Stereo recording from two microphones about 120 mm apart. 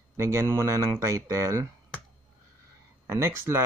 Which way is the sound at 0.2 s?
25° right (ahead or behind).